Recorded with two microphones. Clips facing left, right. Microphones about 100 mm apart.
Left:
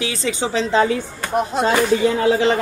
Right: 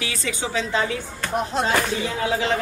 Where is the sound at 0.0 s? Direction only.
25° left (ahead or behind).